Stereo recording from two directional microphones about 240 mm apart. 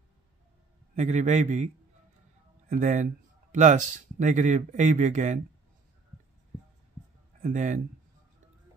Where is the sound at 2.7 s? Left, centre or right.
Right.